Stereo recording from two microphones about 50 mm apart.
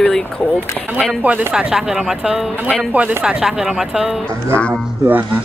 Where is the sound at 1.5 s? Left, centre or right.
Centre.